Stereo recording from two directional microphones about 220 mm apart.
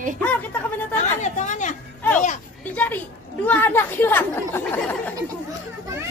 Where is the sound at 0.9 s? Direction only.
35° left (ahead or behind).